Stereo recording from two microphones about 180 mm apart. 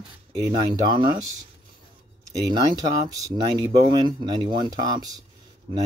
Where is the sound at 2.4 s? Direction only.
25° right (ahead or behind).